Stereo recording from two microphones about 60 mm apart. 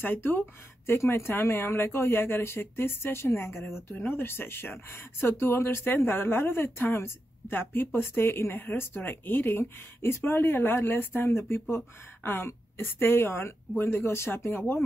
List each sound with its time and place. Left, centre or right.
0.0 s speech: left
0.9 s speech: left
3.9 s a woman's voice: left